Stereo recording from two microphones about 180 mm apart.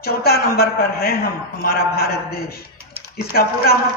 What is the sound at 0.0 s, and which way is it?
A man's voice, 60° left (ahead or behind).